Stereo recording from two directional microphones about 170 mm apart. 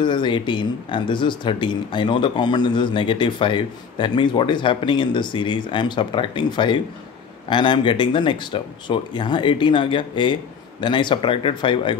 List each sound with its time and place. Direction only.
0.0 s speech: 25° left (ahead or behind)